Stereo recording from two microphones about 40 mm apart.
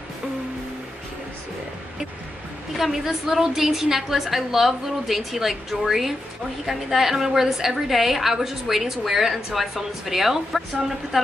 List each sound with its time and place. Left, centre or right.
2.9 s a woman's voice: centre